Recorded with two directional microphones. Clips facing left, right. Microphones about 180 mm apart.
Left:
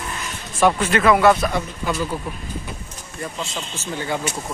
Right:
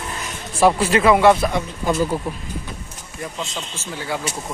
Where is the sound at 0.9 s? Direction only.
25° right (ahead or behind).